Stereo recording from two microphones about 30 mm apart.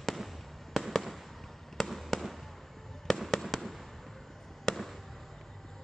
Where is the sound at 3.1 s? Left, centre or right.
Left.